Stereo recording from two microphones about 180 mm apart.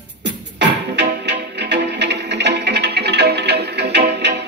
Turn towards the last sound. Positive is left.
turn(degrees=-70)  # may be behind; listen again after turning